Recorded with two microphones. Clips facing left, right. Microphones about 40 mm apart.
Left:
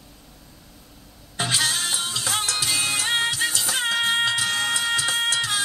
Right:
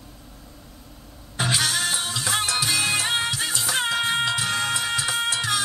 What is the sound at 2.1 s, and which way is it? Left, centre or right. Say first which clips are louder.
Music: right 1 dB; centre.